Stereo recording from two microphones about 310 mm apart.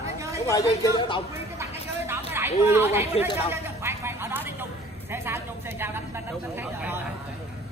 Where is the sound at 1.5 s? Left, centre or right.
Centre.